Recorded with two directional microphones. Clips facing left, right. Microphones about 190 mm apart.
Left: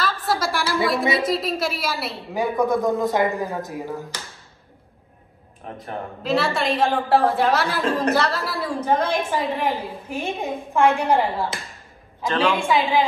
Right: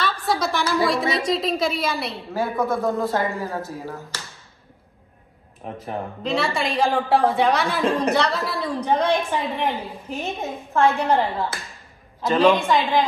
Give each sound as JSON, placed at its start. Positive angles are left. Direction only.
{"t": 0.0, "sound": "a sound", "side_deg": 0}
{"t": 2.3, "sound": "speech", "side_deg": 15}
{"t": 5.9, "sound": "a woman's voice", "side_deg": 0}
{"t": 12.6, "sound": "speech", "side_deg": 10}